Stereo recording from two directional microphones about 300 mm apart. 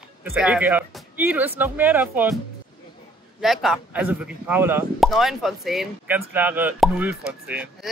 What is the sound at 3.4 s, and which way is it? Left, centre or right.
Speech, centre.